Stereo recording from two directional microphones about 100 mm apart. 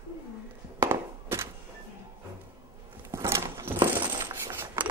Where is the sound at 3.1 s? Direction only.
30° right (ahead or behind).